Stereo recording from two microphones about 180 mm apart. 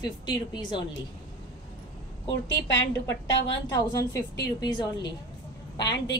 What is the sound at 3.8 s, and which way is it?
A woman's voice, 20° left (ahead or behind).